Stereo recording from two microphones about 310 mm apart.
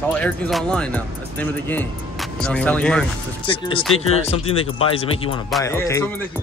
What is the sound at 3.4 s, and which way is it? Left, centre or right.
Speech, centre.